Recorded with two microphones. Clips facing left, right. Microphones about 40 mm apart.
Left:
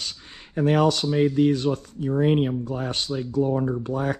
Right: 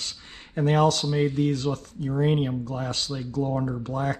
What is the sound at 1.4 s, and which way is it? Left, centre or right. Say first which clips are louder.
Speech: left 5 dB; left.